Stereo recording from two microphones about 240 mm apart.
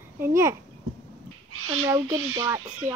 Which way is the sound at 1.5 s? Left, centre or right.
Right.